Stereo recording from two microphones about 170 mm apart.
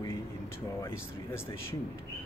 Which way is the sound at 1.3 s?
15° left (ahead or behind).